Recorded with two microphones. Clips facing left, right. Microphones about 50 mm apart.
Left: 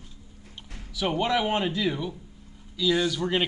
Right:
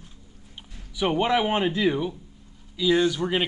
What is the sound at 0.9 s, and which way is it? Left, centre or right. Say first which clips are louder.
Speech: right 3 dB; centre.